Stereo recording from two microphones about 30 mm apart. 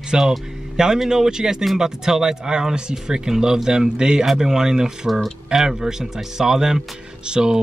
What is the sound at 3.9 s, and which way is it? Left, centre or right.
Speech, right.